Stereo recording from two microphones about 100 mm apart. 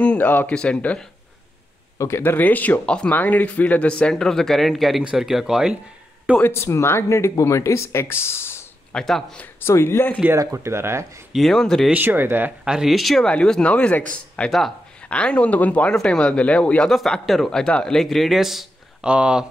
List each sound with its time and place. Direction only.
0.0 s speech: 15° left (ahead or behind)
2.0 s speech: 30° left (ahead or behind); by 5.8 s 5° right (ahead or behind)
6.3 s speech: 25° left (ahead or behind)
8.9 s speech: 5° left (ahead or behind)
9.4 s speech: 25° left (ahead or behind)
10.3 s speech: 30° right (ahead or behind)
11.3 s speech: centre (ahead or behind)
11.9 s speech: 20° right (ahead or behind)
12.7 s speech: centre (ahead or behind)